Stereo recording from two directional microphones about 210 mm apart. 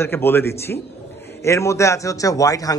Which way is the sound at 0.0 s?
10° left (ahead or behind).